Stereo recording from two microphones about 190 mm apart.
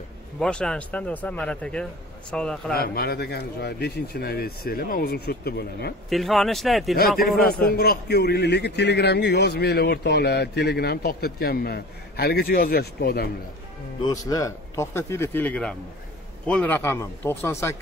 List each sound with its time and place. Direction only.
0.4 s speech: 5° left (ahead or behind)
2.7 s a man's voice: 55° left (ahead or behind)
6.0 s speech: centre (ahead or behind)
7.7 s a man's voice: 55° left (ahead or behind)
14.0 s speech: 20° left (ahead or behind)